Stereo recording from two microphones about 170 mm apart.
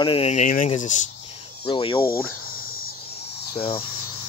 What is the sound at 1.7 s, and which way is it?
Speech, 30° left (ahead or behind).